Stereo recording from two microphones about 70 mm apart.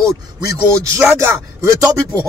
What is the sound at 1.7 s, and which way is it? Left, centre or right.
Speech, right.